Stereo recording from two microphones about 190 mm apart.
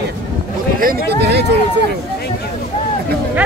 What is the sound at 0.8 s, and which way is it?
Speech, 55° right (ahead or behind).